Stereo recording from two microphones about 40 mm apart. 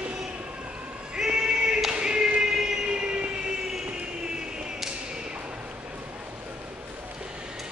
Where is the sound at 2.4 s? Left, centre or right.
Centre.